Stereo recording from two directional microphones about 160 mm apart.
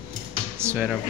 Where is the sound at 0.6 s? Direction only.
15° right (ahead or behind).